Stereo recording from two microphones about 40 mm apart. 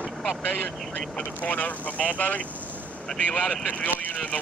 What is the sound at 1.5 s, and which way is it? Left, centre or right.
Speech, left.